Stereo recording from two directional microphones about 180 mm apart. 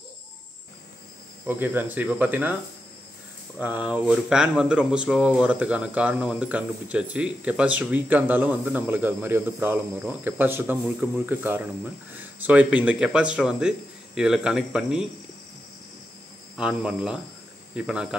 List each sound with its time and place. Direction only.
1.4 s speech: 10° right (ahead or behind)
3.5 s speech: 10° right (ahead or behind)
16.5 s speech: 5° right (ahead or behind)